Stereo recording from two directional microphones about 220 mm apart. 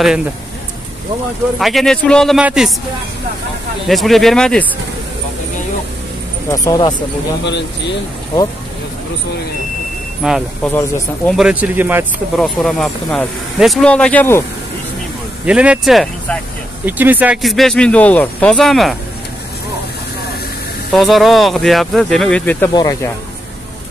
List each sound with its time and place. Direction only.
1.6 s speech: centre (ahead or behind)
3.8 s speech: centre (ahead or behind)
6.5 s speech: 15° left (ahead or behind)
7.4 s speech: 50° left (ahead or behind)
10.2 s speech: centre (ahead or behind)
10.7 s speech: 10° left (ahead or behind)
11.3 s speech: 5° right (ahead or behind)
15.4 s speech: 5° right (ahead or behind)
20.9 s speech: centre (ahead or behind)